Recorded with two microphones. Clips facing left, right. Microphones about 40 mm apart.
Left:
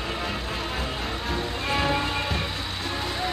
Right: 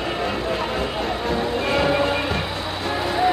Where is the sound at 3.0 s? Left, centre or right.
Centre.